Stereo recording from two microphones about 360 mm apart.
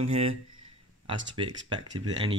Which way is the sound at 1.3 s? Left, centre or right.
Centre.